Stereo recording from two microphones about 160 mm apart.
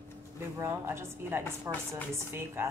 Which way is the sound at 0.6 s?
15° right (ahead or behind).